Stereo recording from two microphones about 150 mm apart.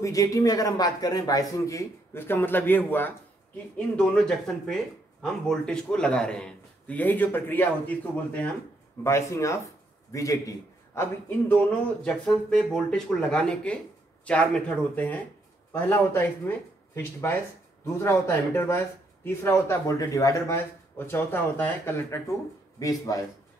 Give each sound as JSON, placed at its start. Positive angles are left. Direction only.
{"t": 0.0, "sound": "a man's voice", "side_deg": 20}